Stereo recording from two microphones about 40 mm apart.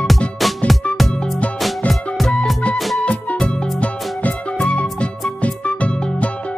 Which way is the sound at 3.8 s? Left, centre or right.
Left.